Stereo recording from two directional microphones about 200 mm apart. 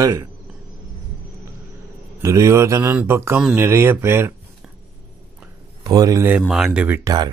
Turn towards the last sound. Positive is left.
turn(degrees=-20)  # may be behind; listen again after turning